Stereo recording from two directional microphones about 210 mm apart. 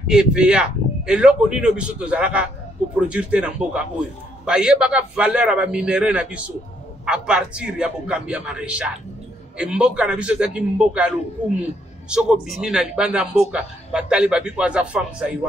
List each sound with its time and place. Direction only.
0.1 s speech: 5° right (ahead or behind)